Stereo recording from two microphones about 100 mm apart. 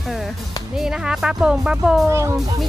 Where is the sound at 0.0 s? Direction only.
Centre (ahead or behind).